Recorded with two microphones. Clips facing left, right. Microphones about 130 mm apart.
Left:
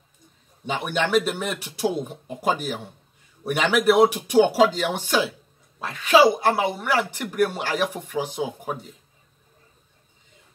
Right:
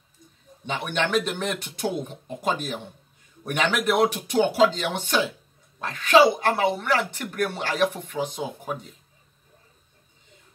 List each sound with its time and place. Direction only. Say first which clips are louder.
0.7 s speech: left 2 dB; 10° left (ahead or behind)